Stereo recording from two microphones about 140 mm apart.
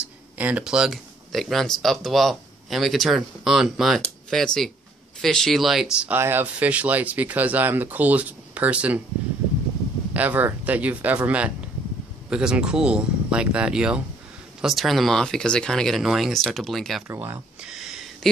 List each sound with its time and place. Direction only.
0.0 s speech: 10° right (ahead or behind)
10.1 s speech: 10° right (ahead or behind)
17.1 s speech: 20° right (ahead or behind)
17.6 s a sound: 5° right (ahead or behind)